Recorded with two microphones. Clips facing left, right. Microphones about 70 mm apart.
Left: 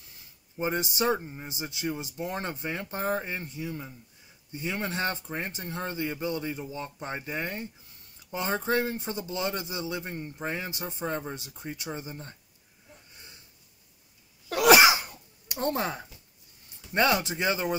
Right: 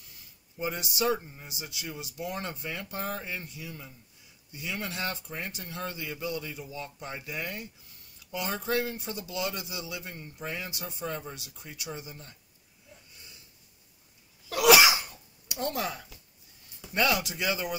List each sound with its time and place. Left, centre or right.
0.6 s speech: left
13.1 s a sound: left
14.5 s sneeze: left
15.4 s speech: left